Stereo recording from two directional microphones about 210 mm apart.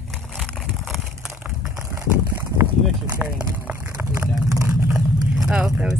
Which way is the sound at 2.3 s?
10° right (ahead or behind).